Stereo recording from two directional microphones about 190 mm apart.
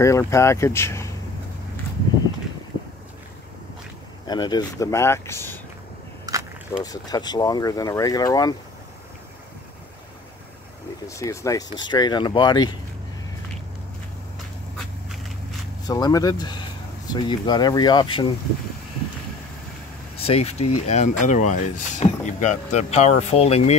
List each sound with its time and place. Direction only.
0.0 s speech: 15° left (ahead or behind)
4.3 s speech: 20° left (ahead or behind)
6.8 s speech: 20° left (ahead or behind)
11.1 s speech: 15° left (ahead or behind)
15.9 s speech: 20° left (ahead or behind)
20.2 s speech: 30° left (ahead or behind)